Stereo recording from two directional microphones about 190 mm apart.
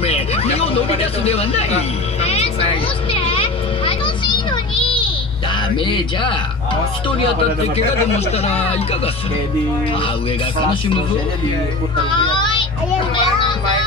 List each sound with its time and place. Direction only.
0.0 s speech: 30° left (ahead or behind)
3.1 s a sound: 30° left (ahead or behind)
8.6 s speech: 30° left (ahead or behind)
12.0 s child singing: 25° left (ahead or behind)
13.1 s children playing: 25° left (ahead or behind)